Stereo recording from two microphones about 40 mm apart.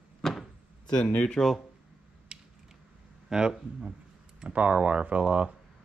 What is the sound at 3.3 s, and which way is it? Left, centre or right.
Speech, centre.